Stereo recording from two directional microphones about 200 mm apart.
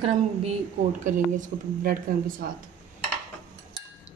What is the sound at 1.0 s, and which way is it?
Speech, 40° right (ahead or behind).